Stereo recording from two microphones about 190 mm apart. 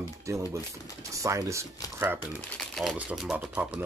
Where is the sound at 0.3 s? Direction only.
15° right (ahead or behind).